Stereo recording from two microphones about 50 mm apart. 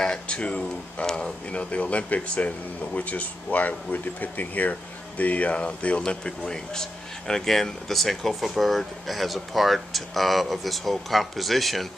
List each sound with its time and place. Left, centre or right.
0.0 s speech: centre